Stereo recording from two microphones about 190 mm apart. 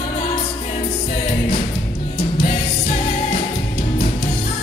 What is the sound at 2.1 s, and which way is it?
Music, 30° left (ahead or behind).